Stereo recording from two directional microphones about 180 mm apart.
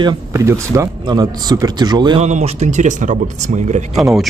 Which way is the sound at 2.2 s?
40° right (ahead or behind).